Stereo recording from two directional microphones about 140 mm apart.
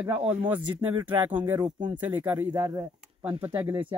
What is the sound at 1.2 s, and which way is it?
Speech, 15° right (ahead or behind).